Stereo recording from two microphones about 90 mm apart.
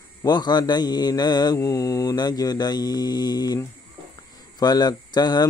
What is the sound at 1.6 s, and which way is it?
Mantra, 40° left (ahead or behind).